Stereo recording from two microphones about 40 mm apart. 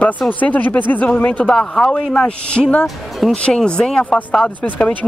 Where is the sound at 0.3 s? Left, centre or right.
Left.